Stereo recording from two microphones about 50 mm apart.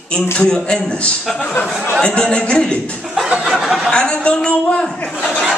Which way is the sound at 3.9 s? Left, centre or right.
Centre.